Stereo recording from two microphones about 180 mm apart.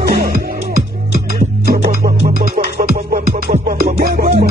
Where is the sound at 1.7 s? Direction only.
55° right (ahead or behind).